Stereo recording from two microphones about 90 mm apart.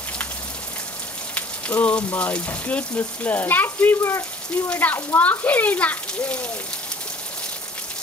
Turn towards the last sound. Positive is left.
turn(degrees=15)  # may be behind; listen again after turning